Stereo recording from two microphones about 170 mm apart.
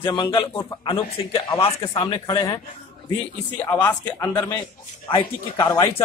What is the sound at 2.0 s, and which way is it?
Speech, 30° left (ahead or behind).